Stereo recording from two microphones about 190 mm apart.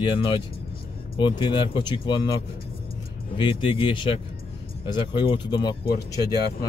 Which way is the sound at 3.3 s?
25° left (ahead or behind).